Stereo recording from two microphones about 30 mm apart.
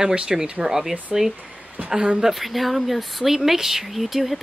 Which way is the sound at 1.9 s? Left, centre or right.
Right.